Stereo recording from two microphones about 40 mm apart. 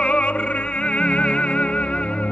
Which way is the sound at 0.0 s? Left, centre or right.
Left.